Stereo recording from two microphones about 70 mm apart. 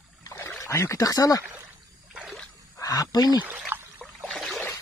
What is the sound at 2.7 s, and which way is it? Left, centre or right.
Speech, left.